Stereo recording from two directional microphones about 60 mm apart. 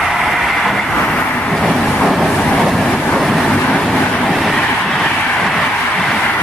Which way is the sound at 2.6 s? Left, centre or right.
Centre.